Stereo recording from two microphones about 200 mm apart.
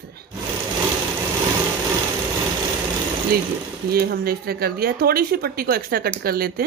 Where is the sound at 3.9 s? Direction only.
50° right (ahead or behind).